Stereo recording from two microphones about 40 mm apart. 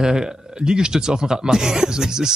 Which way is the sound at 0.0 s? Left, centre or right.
Centre.